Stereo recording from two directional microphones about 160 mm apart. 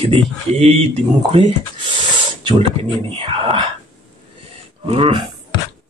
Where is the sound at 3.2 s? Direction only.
30° right (ahead or behind).